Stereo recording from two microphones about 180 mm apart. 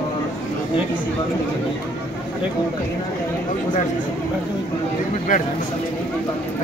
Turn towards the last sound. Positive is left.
turn(degrees=50)  # may be behind; listen again after turning